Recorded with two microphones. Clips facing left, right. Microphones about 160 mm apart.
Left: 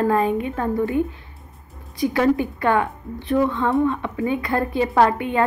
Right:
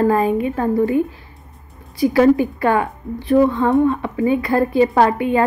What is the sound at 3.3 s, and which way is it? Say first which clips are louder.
Speech: right 5 dB; 35° right (ahead or behind).